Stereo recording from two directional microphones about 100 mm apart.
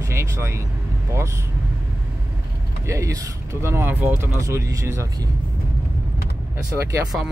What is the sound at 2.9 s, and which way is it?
Speech, 30° right (ahead or behind).